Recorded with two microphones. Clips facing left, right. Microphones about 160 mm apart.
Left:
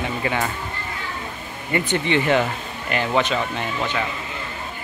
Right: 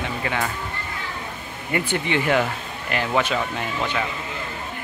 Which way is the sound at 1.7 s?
5° right (ahead or behind).